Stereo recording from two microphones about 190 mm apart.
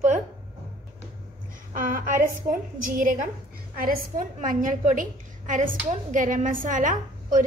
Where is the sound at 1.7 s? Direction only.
45° right (ahead or behind).